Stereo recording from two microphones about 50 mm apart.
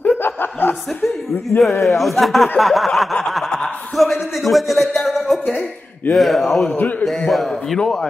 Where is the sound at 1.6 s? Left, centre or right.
Centre.